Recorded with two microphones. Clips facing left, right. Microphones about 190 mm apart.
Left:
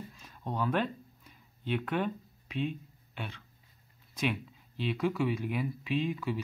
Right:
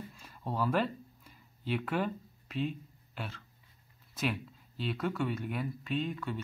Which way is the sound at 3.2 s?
5° right (ahead or behind).